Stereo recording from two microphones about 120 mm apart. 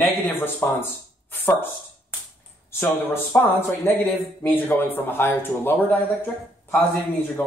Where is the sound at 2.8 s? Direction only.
20° left (ahead or behind).